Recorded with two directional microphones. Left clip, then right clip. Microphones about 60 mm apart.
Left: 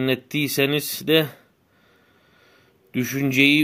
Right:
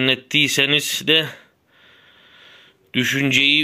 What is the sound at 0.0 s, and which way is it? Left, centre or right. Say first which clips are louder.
Speech: right 6 dB; centre.